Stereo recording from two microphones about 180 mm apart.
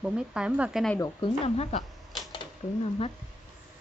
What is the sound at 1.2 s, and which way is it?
Speech, 35° left (ahead or behind).